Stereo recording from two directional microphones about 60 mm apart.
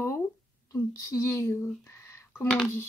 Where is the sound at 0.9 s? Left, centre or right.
Left.